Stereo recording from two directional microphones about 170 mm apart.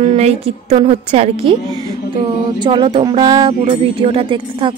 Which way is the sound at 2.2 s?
25° right (ahead or behind).